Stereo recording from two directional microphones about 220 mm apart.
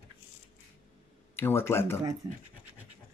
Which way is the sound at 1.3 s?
10° left (ahead or behind).